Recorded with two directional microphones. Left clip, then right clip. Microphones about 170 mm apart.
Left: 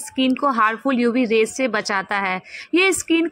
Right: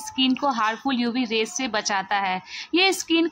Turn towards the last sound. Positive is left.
turn(degrees=10)  # may be behind; listen again after turning